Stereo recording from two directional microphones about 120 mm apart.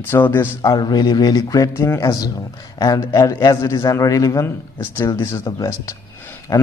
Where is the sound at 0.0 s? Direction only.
20° left (ahead or behind).